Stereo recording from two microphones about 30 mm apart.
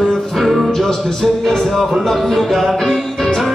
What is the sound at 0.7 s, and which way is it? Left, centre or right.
Music, centre.